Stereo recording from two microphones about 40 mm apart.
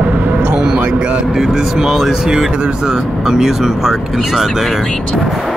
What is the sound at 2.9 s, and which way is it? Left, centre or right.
Speech, centre.